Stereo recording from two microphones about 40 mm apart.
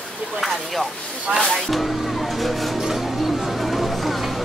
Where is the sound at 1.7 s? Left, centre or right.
Centre.